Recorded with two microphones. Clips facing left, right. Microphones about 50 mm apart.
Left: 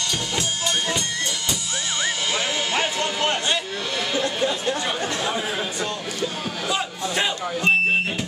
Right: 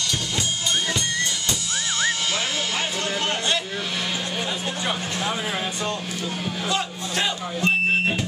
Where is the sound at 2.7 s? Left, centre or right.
Centre.